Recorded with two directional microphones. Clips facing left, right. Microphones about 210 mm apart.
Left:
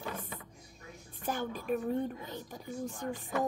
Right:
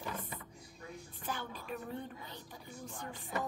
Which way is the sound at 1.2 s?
50° left (ahead or behind).